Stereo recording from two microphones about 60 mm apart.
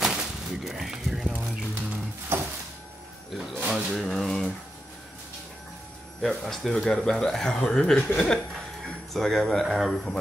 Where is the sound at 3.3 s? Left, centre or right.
Centre.